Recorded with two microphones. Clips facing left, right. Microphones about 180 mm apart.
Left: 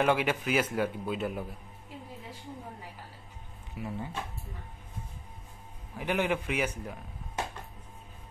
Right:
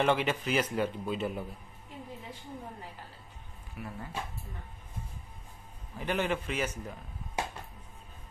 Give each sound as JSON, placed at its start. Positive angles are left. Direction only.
{"t": 0.0, "sound": "a man's voice", "side_deg": 10}
{"t": 3.7, "sound": "speech", "side_deg": 20}
{"t": 5.9, "sound": "a man's voice", "side_deg": 15}